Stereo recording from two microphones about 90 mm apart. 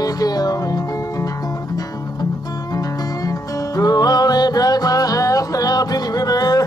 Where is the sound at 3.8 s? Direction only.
45° left (ahead or behind).